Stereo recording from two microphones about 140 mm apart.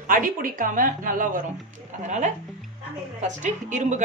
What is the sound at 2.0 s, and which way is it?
A woman's voice, 60° right (ahead or behind).